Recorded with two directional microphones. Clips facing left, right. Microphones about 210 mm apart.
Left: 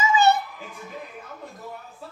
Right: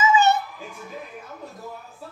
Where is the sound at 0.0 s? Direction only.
35° left (ahead or behind).